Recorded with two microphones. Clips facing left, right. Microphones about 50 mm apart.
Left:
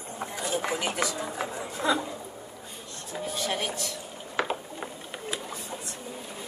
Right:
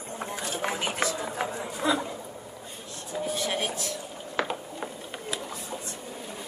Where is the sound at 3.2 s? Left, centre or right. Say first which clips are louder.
Right 1 dB; centre.